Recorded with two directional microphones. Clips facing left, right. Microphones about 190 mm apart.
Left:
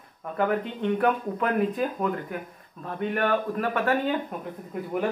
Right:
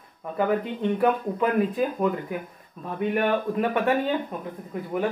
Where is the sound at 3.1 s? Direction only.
15° right (ahead or behind).